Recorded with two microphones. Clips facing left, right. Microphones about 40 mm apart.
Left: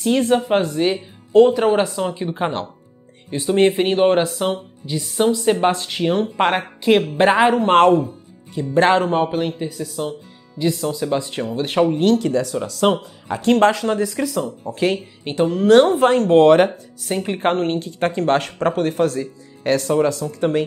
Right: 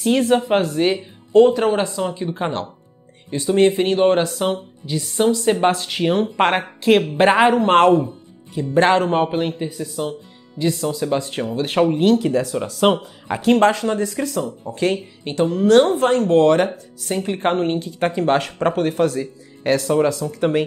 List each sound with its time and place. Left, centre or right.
0.0 s speech: centre
3.6 s speech: centre
4.1 s speech: centre
9.1 s speech: centre
13.4 s speech: centre